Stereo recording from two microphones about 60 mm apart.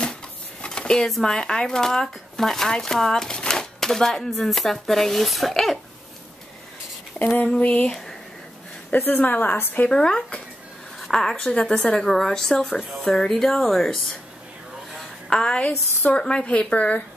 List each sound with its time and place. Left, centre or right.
0.0 s a sound: centre
1.2 s speech: centre
7.3 s a woman's voice: left
8.9 s a woman's voice: left
9.8 s speech: centre
15.0 s a sound: centre
16.1 s a woman's voice: centre